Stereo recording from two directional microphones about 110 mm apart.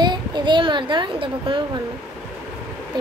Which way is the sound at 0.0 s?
40° right (ahead or behind).